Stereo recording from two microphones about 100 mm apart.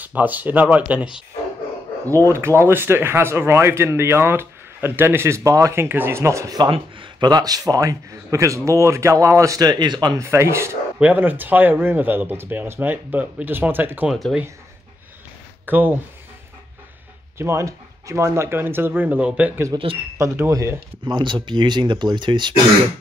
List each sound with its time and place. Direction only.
0.0 s speech: 15° right (ahead or behind)
2.0 s speech: 30° right (ahead or behind)
6.6 s a man's voice: 55° right (ahead or behind)
10.1 s speech: 30° right (ahead or behind)
11.0 s speech: 15° right (ahead or behind)
14.0 s speech: 5° right (ahead or behind)
15.6 s speech: 20° right (ahead or behind)
17.4 s speech: 30° right (ahead or behind); by 19.6 s 15° right (ahead or behind)
20.2 s speech: 30° right (ahead or behind)
21.0 s speech: 55° right (ahead or behind)